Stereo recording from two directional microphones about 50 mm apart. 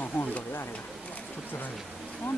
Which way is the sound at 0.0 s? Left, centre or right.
Left.